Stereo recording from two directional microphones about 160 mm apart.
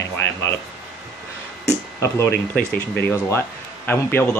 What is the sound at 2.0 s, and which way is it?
Speech, 15° left (ahead or behind).